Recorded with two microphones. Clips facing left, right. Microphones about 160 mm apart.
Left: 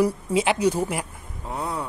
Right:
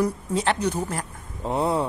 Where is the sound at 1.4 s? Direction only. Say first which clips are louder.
Right 7 dB; 25° right (ahead or behind).